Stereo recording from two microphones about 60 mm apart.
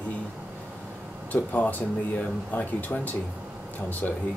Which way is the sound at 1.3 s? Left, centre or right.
Left.